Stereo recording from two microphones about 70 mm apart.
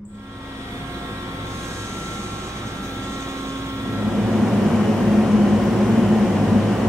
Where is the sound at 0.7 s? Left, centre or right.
Right.